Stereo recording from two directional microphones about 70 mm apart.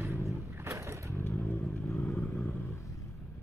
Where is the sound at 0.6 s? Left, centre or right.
Right.